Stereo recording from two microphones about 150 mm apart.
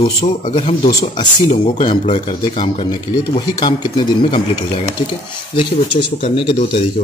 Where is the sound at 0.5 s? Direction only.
40° left (ahead or behind).